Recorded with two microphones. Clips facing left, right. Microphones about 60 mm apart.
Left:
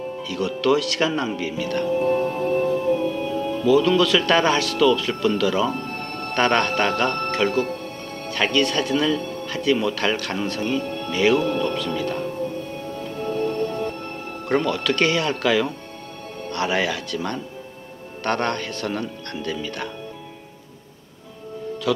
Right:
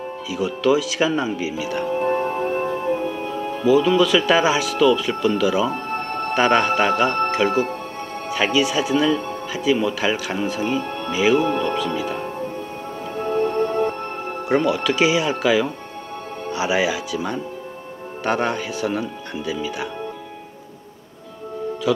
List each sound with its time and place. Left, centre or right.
0.3 s speech: centre
2.0 s music: right
3.6 s speech: centre
5.9 s music: right
6.3 s speech: centre
13.2 s music: right
14.5 s speech: centre
21.9 s speech: centre